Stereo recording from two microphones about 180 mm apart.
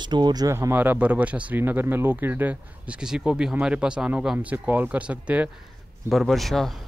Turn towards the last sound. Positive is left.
turn(degrees=0)  # may be behind; listen again after turning